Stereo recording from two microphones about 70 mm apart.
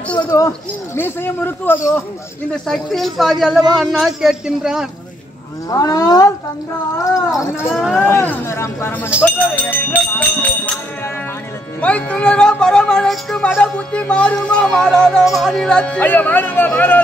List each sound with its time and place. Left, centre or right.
0.3 s speech: left
0.9 s speech: left
2.5 s speech: centre
4.2 s speech: centre
5.7 s speech: left
7.2 s speech: centre
8.1 s speech: left
9.2 s music: left
11.8 s speech: centre
16.1 s music: left